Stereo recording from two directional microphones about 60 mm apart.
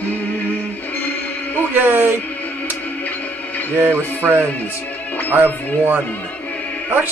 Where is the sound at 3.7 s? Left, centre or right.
Right.